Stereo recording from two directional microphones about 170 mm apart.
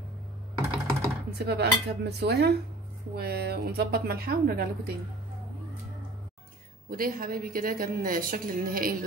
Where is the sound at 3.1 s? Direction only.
70° right (ahead or behind).